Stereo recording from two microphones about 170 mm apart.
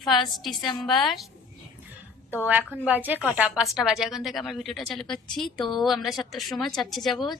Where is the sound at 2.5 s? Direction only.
10° right (ahead or behind).